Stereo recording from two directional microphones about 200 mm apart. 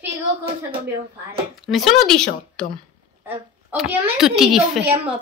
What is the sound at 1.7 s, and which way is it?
A woman's voice, centre (ahead or behind).